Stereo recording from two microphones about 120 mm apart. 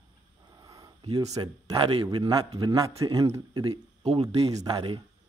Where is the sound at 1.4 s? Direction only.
45° right (ahead or behind).